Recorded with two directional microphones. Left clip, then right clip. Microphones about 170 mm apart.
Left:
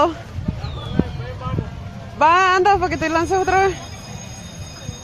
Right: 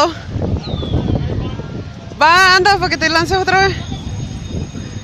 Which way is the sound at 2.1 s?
10° right (ahead or behind).